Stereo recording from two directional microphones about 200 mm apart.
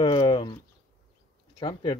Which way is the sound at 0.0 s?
25° left (ahead or behind).